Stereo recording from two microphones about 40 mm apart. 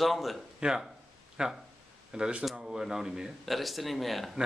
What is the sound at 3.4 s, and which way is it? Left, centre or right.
Speech, centre.